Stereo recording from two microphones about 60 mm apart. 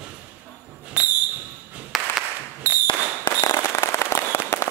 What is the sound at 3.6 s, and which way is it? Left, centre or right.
Firecracker, left.